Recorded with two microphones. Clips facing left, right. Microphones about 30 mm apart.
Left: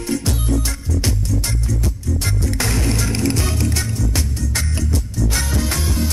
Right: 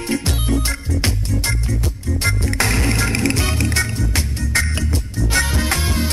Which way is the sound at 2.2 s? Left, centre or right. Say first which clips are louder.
Right 5 dB; right.